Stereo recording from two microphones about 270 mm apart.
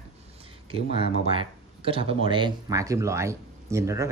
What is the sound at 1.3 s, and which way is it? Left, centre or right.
Speech, centre.